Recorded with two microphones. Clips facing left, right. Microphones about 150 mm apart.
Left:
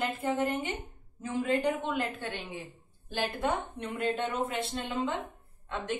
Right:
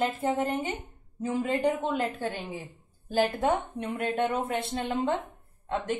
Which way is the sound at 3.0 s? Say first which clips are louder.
Right 6 dB; 40° right (ahead or behind).